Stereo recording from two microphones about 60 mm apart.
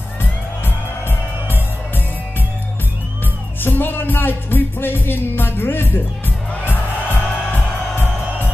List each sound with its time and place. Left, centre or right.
0.2 s music: left
3.6 s music: left